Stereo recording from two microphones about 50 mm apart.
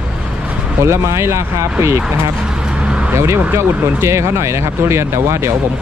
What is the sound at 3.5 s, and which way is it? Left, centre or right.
Speech, right.